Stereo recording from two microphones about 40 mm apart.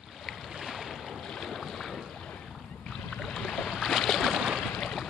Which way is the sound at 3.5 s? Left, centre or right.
Centre.